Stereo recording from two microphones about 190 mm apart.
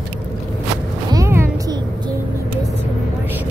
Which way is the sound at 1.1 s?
15° right (ahead or behind).